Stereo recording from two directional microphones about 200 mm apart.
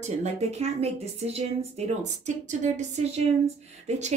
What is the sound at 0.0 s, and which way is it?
Speech, 35° right (ahead or behind).